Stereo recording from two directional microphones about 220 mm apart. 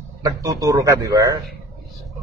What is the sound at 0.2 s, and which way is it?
A man's voice, 15° right (ahead or behind).